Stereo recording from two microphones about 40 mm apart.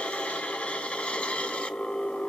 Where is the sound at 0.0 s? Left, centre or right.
Left.